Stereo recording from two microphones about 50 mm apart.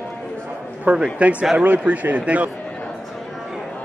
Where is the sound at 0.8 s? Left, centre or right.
Right.